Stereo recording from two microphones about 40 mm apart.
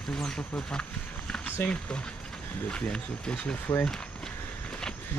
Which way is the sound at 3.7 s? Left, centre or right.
Left.